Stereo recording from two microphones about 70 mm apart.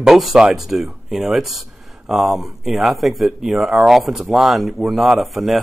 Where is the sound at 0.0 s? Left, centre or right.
Centre.